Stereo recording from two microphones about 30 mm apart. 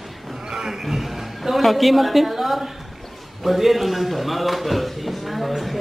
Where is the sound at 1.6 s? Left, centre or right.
Centre.